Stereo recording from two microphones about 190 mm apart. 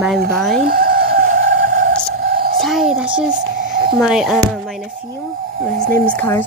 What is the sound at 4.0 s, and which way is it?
Speech, centre (ahead or behind).